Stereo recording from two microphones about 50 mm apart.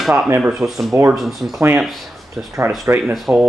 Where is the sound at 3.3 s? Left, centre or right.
Right.